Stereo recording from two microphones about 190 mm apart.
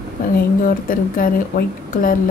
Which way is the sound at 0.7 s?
45° left (ahead or behind).